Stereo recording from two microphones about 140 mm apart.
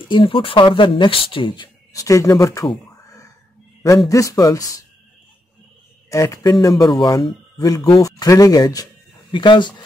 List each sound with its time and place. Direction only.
0.1 s speech: 35° left (ahead or behind)
4.1 s speech: 25° left (ahead or behind)
6.0 s speech: 20° left (ahead or behind)